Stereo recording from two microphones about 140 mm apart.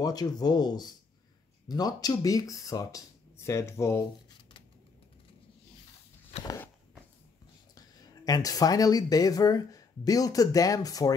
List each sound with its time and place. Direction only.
0.0 s speech: 25° left (ahead or behind)
7.7 s speech: 25° left (ahead or behind)